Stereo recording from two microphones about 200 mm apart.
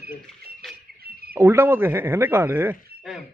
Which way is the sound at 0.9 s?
50° right (ahead or behind).